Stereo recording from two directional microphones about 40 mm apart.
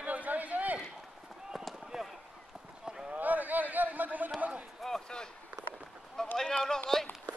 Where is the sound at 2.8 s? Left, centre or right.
Right.